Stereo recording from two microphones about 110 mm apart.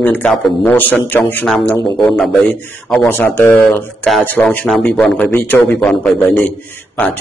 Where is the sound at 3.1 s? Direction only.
20° left (ahead or behind).